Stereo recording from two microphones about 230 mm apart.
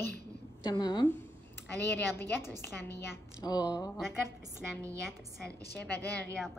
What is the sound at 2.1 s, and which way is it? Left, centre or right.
A woman's voice, centre.